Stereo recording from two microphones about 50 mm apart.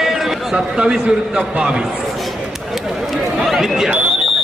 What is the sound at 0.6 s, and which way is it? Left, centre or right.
A man's voice, centre.